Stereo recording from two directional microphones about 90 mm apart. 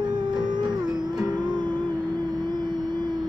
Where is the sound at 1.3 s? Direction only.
55° right (ahead or behind).